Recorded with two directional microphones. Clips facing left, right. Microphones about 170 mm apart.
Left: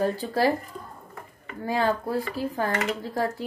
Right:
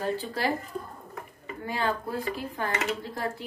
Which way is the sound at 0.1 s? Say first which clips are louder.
Left 5 dB; 40° left (ahead or behind).